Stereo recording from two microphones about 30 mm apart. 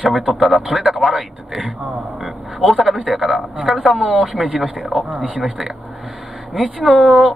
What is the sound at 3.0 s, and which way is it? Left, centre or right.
Speech, centre.